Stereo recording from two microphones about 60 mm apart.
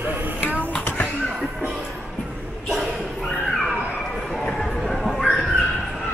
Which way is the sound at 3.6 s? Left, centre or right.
Centre.